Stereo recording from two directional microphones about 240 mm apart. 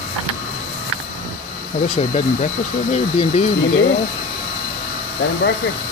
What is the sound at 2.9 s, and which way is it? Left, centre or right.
Speech, left.